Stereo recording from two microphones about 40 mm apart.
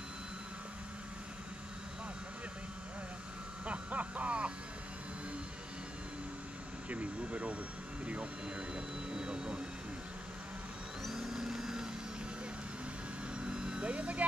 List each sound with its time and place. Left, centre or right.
3.6 s a sound: right
6.9 s vehicle: right
8.0 s speech: right
9.1 s vehicle: right
11.1 s a sound: centre
13.5 s vehicle: centre